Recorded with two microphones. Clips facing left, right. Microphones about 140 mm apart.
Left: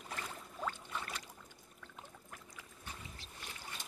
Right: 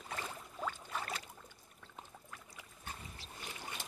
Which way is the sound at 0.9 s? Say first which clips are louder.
Right 2 dB; 35° right (ahead or behind).